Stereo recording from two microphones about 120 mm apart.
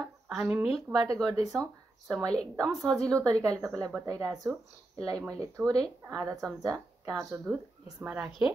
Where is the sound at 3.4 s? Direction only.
25° right (ahead or behind).